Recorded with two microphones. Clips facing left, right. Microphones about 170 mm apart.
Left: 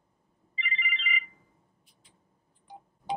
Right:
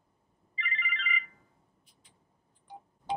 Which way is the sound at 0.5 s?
15° left (ahead or behind).